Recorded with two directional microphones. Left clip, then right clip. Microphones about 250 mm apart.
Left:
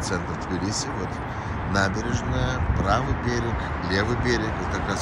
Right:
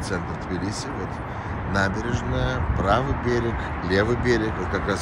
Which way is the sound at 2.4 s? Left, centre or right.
Centre.